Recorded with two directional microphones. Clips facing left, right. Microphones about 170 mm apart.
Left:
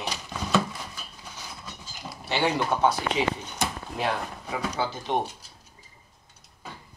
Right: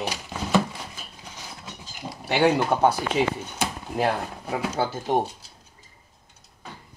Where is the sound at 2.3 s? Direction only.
55° right (ahead or behind).